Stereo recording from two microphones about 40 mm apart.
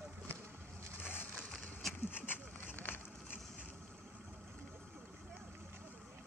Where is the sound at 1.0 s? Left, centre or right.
Left.